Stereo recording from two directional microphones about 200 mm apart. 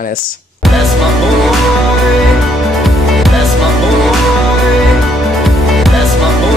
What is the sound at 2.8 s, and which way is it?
Music, centre (ahead or behind).